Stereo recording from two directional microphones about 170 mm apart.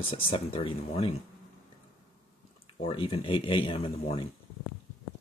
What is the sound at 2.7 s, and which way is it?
Speech, 35° left (ahead or behind).